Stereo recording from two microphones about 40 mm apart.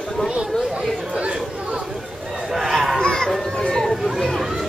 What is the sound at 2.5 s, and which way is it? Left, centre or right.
Chatter, centre.